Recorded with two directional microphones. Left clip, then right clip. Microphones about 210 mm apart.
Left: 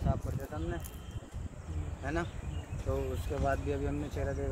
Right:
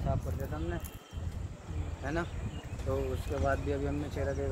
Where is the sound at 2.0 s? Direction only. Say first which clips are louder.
Right 1 dB; 35° left (ahead or behind).